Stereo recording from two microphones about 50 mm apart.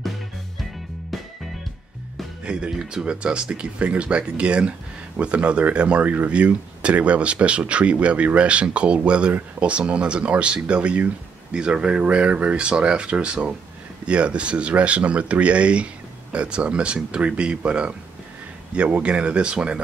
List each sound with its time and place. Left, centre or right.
2.4 s speech: centre